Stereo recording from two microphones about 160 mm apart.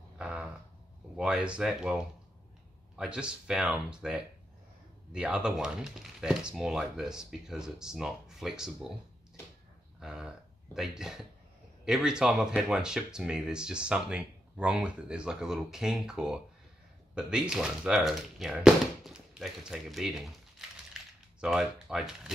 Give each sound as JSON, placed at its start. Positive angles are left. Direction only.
{"t": 0.2, "sound": "a sound", "side_deg": -5}
{"t": 1.1, "sound": "speech", "side_deg": -5}
{"t": 3.0, "sound": "speech", "side_deg": -5}
{"t": 9.9, "sound": "speech", "side_deg": -5}